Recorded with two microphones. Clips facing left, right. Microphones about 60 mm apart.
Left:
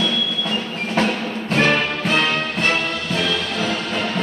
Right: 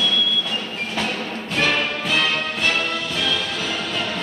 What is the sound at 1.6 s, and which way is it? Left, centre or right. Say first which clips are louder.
Music: left 3 dB; left.